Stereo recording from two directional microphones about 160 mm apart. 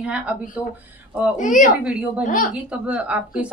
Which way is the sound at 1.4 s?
50° left (ahead or behind).